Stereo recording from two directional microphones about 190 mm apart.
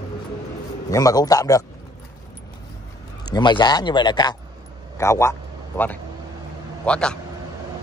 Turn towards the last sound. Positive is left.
turn(degrees=5)  # may be behind; listen again after turning